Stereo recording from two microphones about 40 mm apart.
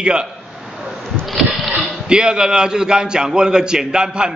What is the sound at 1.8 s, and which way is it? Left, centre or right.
Speech, right.